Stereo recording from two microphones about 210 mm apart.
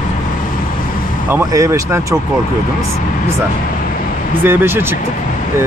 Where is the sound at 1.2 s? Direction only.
15° right (ahead or behind).